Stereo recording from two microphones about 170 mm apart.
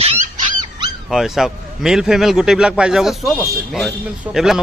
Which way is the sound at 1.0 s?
Centre (ahead or behind).